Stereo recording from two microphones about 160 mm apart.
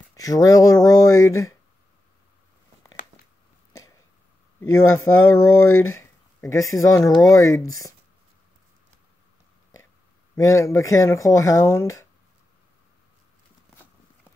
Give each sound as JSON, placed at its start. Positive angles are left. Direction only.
{"t": 0.1, "sound": "speech", "side_deg": 20}
{"t": 4.6, "sound": "speech", "side_deg": 15}
{"t": 10.3, "sound": "speech", "side_deg": 20}